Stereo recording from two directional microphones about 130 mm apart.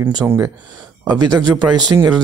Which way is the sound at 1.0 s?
30° right (ahead or behind).